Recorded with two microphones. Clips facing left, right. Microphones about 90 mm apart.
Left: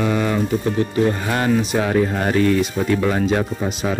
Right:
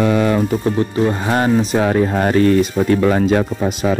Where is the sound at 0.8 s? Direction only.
30° right (ahead or behind).